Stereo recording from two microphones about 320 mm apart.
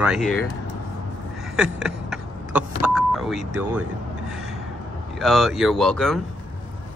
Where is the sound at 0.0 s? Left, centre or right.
Centre.